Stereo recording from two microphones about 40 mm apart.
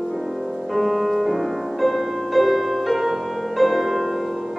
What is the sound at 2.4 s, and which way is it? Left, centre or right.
Music, centre.